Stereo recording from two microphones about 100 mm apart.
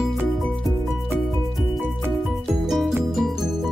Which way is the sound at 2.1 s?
Centre (ahead or behind).